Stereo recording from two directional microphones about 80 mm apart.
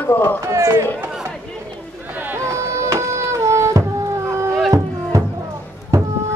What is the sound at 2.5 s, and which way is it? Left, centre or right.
Music, right.